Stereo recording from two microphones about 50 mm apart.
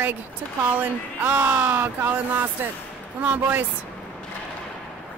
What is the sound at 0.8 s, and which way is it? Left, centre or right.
Speech, right.